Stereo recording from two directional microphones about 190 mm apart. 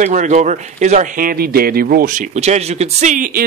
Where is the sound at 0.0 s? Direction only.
40° right (ahead or behind).